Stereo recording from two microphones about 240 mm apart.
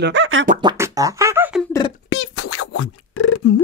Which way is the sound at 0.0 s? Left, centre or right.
Right.